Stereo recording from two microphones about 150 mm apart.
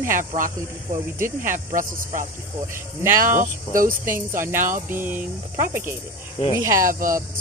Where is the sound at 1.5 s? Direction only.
60° right (ahead or behind).